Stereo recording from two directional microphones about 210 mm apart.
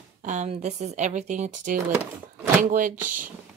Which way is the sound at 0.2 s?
35° right (ahead or behind).